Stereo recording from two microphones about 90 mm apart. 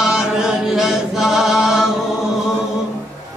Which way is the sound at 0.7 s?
5° right (ahead or behind).